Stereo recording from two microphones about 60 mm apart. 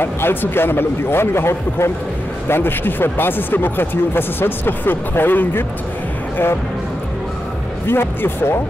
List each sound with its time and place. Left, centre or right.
0.0 s speech: left
7.8 s speech: left